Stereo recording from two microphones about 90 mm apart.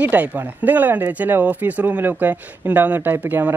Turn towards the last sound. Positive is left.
turn(degrees=-20)  # may be behind; listen again after turning